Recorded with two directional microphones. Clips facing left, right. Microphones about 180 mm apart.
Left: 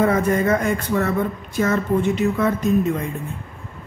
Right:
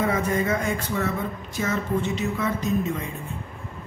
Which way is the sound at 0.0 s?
55° left (ahead or behind).